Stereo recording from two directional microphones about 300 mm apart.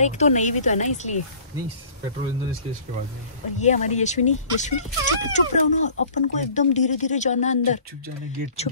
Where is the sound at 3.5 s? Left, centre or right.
Left.